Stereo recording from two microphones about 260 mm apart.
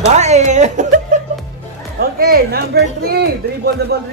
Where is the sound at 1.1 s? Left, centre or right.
Right.